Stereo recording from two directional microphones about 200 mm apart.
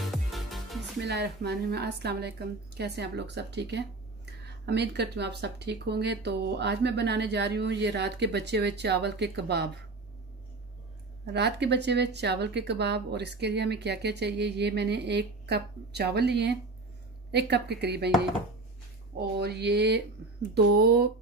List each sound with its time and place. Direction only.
0.0 s music: centre (ahead or behind)
1.0 s a woman's voice: 55° right (ahead or behind)
11.2 s a woman's voice: 55° right (ahead or behind)
19.1 s a woman's voice: 55° right (ahead or behind)